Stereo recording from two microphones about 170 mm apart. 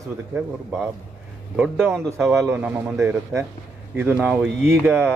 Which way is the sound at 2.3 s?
15° right (ahead or behind).